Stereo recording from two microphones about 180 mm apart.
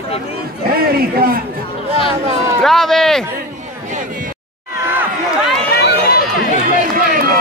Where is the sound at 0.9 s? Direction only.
55° right (ahead or behind).